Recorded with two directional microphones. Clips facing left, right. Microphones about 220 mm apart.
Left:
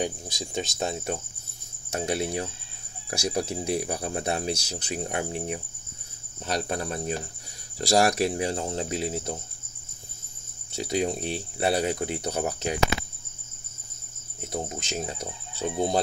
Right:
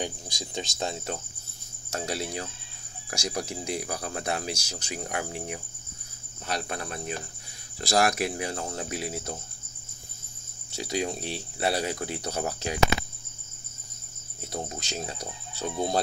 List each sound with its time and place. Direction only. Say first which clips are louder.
0.0 s speech: left 4 dB; 20° left (ahead or behind)
1.9 s speech: left 4 dB; 20° left (ahead or behind)
6.4 s cricket: left 4 dB; 35° left (ahead or behind)
8.0 s speech: left 1 dB; 30° left (ahead or behind)
10.8 s speech: left 3 dB; 25° left (ahead or behind)
14.4 s speech: left 3 dB; 20° left (ahead or behind)